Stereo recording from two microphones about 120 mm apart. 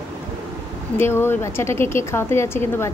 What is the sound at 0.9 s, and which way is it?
A woman's voice, 20° left (ahead or behind).